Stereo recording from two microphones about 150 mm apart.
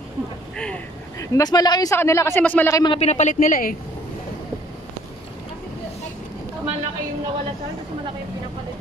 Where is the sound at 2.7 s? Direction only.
30° left (ahead or behind).